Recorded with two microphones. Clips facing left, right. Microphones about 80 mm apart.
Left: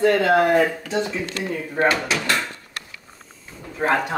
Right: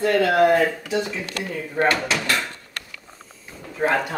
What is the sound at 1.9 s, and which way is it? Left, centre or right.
Speech, centre.